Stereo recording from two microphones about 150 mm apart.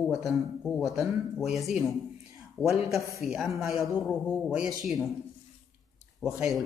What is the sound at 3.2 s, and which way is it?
Speech, centre (ahead or behind).